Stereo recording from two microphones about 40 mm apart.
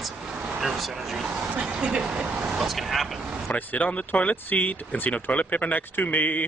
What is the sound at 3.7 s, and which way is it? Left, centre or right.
Speech, left.